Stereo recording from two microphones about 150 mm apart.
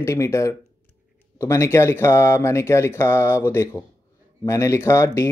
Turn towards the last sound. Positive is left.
turn(degrees=20)  # may be behind; listen again after turning